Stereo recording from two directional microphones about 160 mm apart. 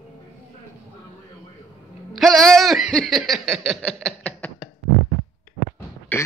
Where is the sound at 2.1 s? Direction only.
Centre (ahead or behind).